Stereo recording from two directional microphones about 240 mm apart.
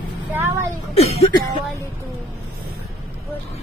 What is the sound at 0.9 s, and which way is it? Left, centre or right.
Speech, left.